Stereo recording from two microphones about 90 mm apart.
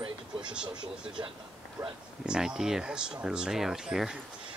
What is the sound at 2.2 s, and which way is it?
Speech, 10° right (ahead or behind).